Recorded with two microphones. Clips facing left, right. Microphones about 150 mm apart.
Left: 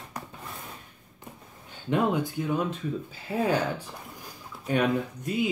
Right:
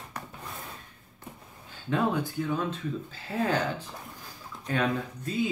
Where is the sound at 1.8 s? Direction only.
15° left (ahead or behind).